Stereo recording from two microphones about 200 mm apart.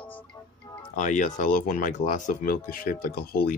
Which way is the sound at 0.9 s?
40° left (ahead or behind).